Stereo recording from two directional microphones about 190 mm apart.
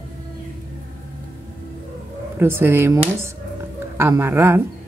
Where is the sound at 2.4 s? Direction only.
10° right (ahead or behind).